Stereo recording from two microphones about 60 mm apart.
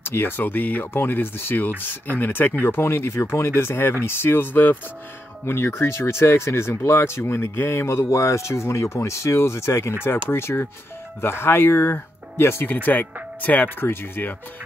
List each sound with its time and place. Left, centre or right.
0.0 s speech: left
5.4 s speech: left
12.6 s speech: left